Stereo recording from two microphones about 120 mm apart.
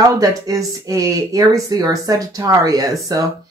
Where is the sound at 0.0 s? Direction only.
30° right (ahead or behind).